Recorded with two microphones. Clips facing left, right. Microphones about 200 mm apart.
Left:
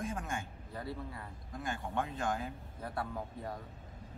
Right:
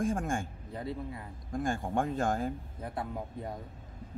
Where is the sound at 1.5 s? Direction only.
45° right (ahead or behind).